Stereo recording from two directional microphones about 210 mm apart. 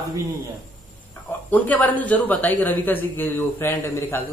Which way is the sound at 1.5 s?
5° left (ahead or behind).